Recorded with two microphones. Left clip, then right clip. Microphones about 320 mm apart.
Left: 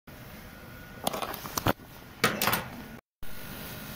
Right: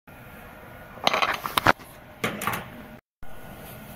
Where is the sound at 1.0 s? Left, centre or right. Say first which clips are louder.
Right 10 dB; right.